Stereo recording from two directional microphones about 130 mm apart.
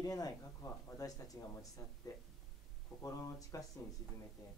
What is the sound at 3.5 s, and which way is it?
Speech, 25° left (ahead or behind).